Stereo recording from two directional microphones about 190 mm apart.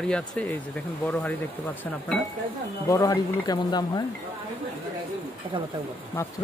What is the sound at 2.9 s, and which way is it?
Speech, 15° left (ahead or behind).